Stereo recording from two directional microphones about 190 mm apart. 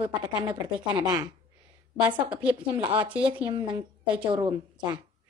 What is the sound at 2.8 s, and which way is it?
Speech, 25° right (ahead or behind).